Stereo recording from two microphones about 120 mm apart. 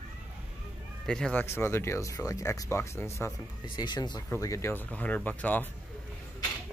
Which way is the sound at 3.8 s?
35° left (ahead or behind).